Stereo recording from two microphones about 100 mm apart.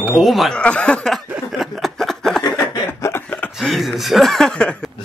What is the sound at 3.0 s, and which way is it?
Chuckle, 25° left (ahead or behind).